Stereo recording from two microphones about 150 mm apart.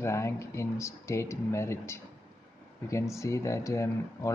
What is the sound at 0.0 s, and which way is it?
Speech, 20° left (ahead or behind).